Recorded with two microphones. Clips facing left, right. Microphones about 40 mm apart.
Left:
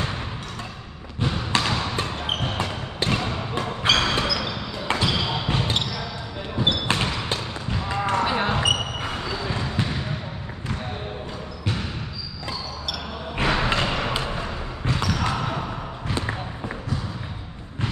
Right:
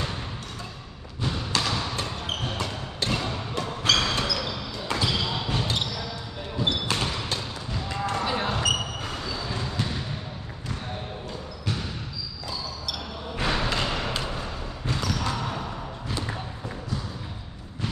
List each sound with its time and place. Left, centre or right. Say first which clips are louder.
1.2 s basketball bounce: left 4 dB; left
4.8 s basketball bounce: left 3 dB; left
5.1 s basketball bounce: left 3 dB; left
5.5 s basketball bounce: left 3 dB; left
13.5 s music: left 4 dB; left
15.0 s basketball bounce: left 3 dB; left